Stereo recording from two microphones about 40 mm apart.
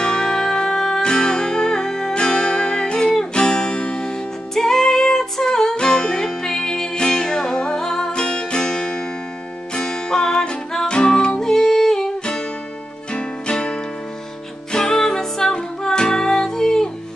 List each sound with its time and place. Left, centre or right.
0.0 s music: centre
4.6 s music: centre
13.1 s music: left